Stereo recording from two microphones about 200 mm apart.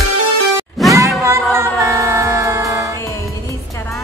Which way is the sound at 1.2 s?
15° right (ahead or behind).